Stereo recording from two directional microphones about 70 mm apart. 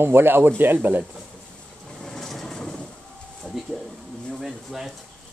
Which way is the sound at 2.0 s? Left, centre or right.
Centre.